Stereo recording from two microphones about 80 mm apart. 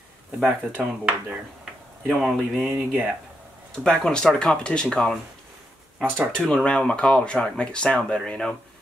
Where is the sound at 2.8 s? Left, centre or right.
Right.